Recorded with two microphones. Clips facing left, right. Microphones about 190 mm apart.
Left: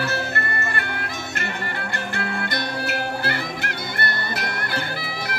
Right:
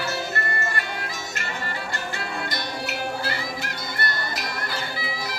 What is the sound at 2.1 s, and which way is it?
Music, 60° left (ahead or behind).